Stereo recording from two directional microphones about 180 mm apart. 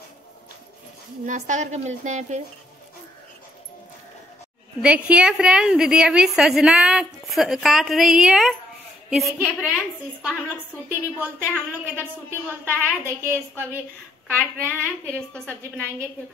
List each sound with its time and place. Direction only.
1.2 s a woman's voice: 45° right (ahead or behind)
4.8 s a woman's voice: 5° right (ahead or behind)
10.9 s a woman's voice: 10° right (ahead or behind)